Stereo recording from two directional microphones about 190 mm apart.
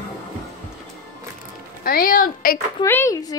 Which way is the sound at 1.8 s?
50° left (ahead or behind).